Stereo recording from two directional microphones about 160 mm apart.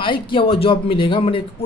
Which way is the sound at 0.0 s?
30° left (ahead or behind).